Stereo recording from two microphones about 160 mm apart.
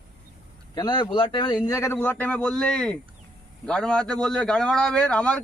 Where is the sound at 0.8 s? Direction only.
30° left (ahead or behind).